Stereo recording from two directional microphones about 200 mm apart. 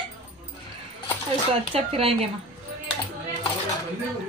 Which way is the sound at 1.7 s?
30° right (ahead or behind).